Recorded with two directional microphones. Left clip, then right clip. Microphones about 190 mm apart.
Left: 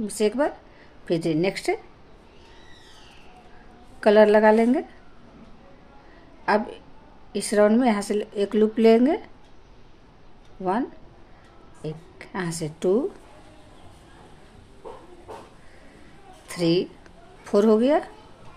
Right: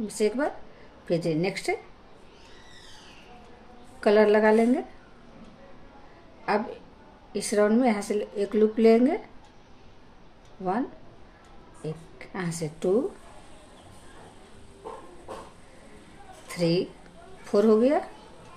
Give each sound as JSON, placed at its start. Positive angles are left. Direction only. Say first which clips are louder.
{"t": 0.0, "sound": "speech", "louder": "left 3 dB", "side_deg": 35}
{"t": 4.0, "sound": "speech", "louder": "left 4 dB", "side_deg": 35}
{"t": 6.5, "sound": "speech", "louder": "left 4 dB", "side_deg": 35}
{"t": 11.8, "sound": "speech", "louder": "left 2 dB", "side_deg": 35}
{"t": 16.4, "sound": "a woman's voice", "louder": "left 3 dB", "side_deg": 35}